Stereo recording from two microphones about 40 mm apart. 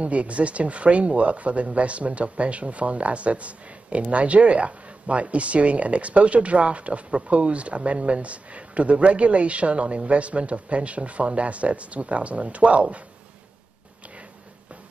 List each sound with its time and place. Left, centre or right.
0.0 s speech: right